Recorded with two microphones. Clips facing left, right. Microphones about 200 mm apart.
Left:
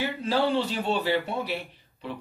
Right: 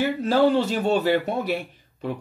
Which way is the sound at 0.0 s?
45° right (ahead or behind).